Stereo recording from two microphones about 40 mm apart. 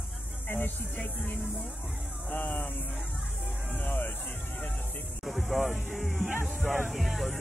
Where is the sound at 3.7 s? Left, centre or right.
Left.